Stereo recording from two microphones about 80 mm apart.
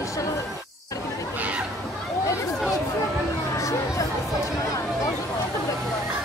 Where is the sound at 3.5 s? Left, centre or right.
Left.